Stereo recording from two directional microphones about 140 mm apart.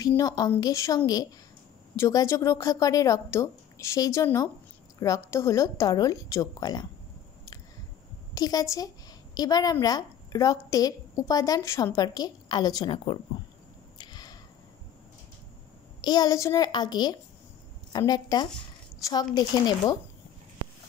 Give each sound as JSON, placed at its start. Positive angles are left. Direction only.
{"t": 0.6, "sound": "a woman's voice", "side_deg": 25}
{"t": 8.4, "sound": "a woman's voice", "side_deg": 25}
{"t": 13.9, "sound": "a sound", "side_deg": 30}
{"t": 16.0, "sound": "a woman's voice", "side_deg": 30}